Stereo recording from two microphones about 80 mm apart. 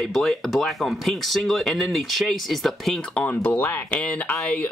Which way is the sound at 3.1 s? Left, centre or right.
Centre.